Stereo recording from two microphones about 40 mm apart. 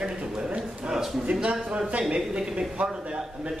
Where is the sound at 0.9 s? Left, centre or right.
Centre.